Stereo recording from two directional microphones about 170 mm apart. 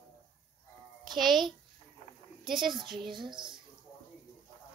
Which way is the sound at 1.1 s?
Centre (ahead or behind).